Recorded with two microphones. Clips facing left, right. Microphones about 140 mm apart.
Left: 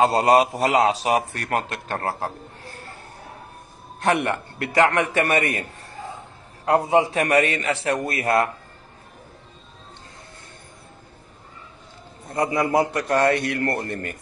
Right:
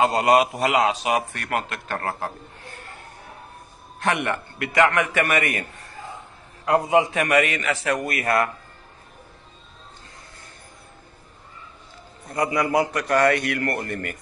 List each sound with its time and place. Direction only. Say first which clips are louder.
0.0 s a man's voice: left 1 dB; 35° left (ahead or behind)
4.0 s a man's voice: left 3 dB; 35° left (ahead or behind)
12.3 s a man's voice: left 1 dB; 25° left (ahead or behind)